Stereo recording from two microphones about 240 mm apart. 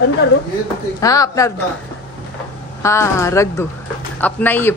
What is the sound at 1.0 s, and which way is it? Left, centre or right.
Speech, centre.